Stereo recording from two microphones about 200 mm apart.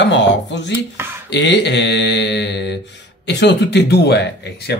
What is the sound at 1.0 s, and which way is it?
Speech, 10° right (ahead or behind).